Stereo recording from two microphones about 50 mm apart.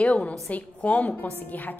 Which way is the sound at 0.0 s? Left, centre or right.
Left.